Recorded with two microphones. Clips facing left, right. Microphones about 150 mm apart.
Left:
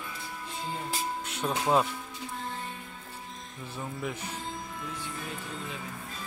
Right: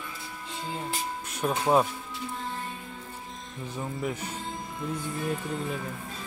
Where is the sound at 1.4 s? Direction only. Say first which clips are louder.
Right 3 dB; 10° right (ahead or behind).